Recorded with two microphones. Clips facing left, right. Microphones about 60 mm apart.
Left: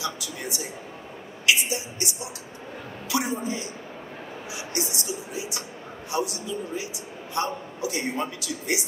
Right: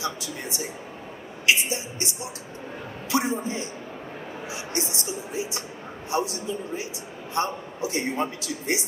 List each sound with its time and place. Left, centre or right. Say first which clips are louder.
0.0 s a man's voice: right 1 dB; right